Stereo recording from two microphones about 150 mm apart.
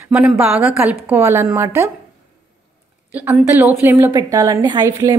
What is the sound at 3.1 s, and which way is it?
A woman's voice, 10° right (ahead or behind).